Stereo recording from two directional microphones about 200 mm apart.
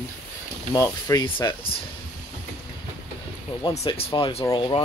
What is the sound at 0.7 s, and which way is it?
Rub, 20° left (ahead or behind).